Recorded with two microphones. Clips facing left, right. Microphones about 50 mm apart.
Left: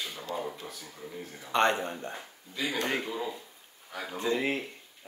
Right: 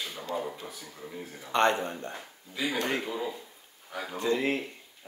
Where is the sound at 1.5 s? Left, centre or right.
Centre.